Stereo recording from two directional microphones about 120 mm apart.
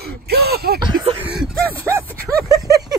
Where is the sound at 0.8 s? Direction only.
45° right (ahead or behind).